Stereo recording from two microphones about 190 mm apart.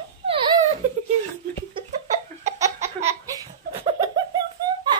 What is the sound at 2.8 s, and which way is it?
Laughter, 35° right (ahead or behind).